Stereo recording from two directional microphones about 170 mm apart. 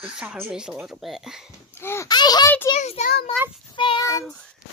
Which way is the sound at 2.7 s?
40° left (ahead or behind).